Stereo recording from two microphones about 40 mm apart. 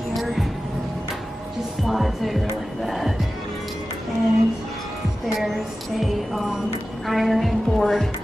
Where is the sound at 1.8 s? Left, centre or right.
Centre.